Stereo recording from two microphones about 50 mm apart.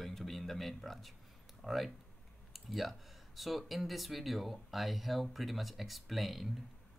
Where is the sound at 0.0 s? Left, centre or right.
Centre.